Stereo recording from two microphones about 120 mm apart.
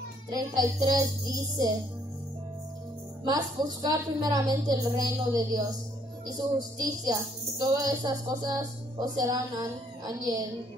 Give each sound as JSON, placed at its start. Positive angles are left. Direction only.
{"t": 0.3, "sound": "a woman's voice", "side_deg": -30}
{"t": 3.3, "sound": "a woman's voice", "side_deg": -35}